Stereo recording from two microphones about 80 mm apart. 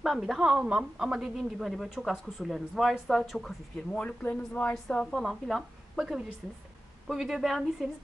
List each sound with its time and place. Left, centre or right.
0.2 s a woman's voice: centre
4.0 s speech: centre
4.8 s speech: centre